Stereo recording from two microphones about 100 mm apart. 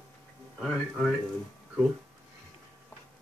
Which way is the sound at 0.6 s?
Centre (ahead or behind).